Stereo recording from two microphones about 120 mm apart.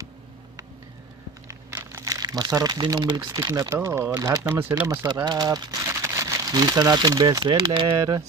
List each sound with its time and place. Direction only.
1.5 s speech: 20° right (ahead or behind)
5.2 s speech: 35° right (ahead or behind)
5.9 s speech: 25° right (ahead or behind); by 8.2 s 40° right (ahead or behind)